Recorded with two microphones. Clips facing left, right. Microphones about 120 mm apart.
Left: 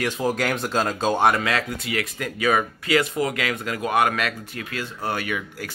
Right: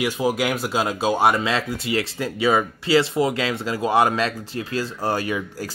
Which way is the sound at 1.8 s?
30° right (ahead or behind).